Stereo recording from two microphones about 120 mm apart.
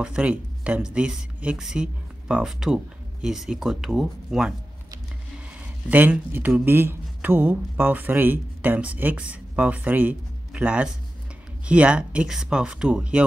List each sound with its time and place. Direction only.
0.0 s speech: 10° right (ahead or behind)
5.6 s a man's voice: 15° right (ahead or behind)